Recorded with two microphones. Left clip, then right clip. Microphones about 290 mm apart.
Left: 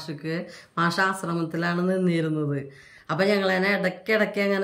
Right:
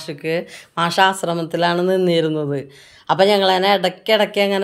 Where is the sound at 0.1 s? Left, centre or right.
Right.